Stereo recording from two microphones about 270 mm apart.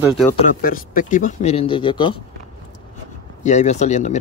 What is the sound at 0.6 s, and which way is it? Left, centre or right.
Speech, left.